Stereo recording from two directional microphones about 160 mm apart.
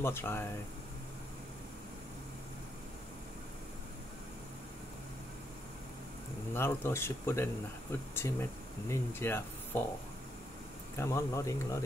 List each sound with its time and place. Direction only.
0.0 s speech: 15° left (ahead or behind)
6.5 s speech: 15° left (ahead or behind)
11.0 s speech: 20° left (ahead or behind)